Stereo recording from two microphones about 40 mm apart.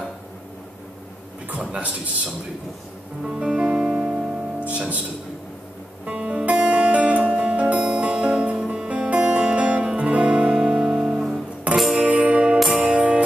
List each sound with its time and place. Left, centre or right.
1.5 s a man's voice: right
3.3 s music: centre
4.6 s speech: right
6.0 s music: right; by 12.0 s centre
12.0 s music: right